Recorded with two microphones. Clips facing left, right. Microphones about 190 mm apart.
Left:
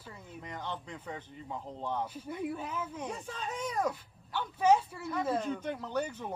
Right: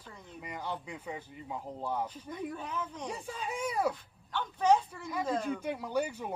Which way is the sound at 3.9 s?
10° left (ahead or behind).